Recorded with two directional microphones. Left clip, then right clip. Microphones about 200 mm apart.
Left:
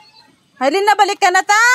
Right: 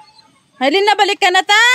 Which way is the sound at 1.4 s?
35° right (ahead or behind).